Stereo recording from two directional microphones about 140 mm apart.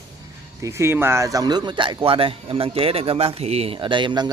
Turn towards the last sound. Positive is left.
turn(degrees=-35)  # may be behind; listen again after turning